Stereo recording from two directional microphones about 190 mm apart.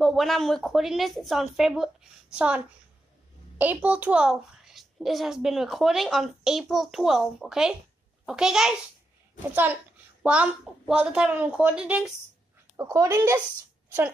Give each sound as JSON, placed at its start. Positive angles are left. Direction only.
{"t": 0.0, "sound": "a child's voice", "side_deg": 0}
{"t": 10.2, "sound": "a child's voice", "side_deg": -5}
{"t": 12.7, "sound": "speech", "side_deg": -15}